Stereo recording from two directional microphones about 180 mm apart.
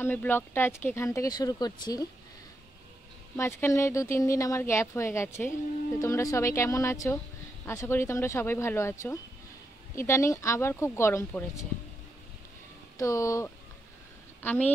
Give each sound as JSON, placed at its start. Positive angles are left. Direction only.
{"t": 0.0, "sound": "speech", "side_deg": 10}
{"t": 3.3, "sound": "speech", "side_deg": 15}
{"t": 12.9, "sound": "speech", "side_deg": 15}